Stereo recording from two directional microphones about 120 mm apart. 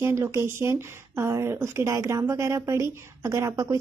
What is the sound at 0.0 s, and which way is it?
A woman's voice, 25° right (ahead or behind).